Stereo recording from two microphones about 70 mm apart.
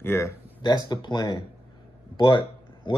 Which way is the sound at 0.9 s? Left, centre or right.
Left.